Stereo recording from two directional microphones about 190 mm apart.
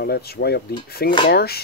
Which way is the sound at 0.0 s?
55° left (ahead or behind).